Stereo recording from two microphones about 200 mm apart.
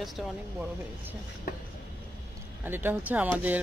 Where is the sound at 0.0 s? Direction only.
Centre (ahead or behind).